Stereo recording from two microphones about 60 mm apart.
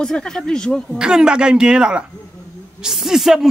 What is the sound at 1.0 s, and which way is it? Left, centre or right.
Speech, centre.